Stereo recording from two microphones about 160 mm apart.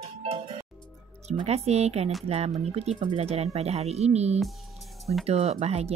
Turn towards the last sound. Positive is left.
turn(degrees=-40)  # may be behind; listen again after turning